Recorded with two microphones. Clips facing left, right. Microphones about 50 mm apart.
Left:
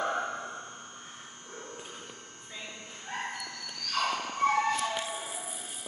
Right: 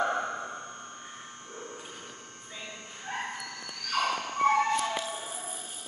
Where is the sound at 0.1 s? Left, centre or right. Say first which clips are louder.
Right 1 dB; centre.